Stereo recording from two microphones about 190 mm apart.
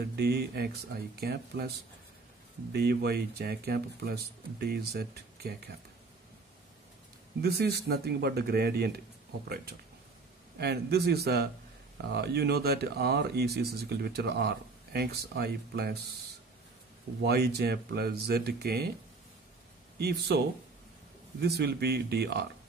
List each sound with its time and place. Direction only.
0.0 s speech: 55° right (ahead or behind)
2.7 s speech: 60° right (ahead or behind)
7.4 s speech: 55° right (ahead or behind)
10.6 s speech: 60° right (ahead or behind)
17.2 s speech: 55° right (ahead or behind)
20.0 s speech: 60° right (ahead or behind)